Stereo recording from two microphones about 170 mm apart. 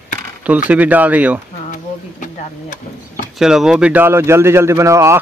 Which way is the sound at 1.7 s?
50° left (ahead or behind).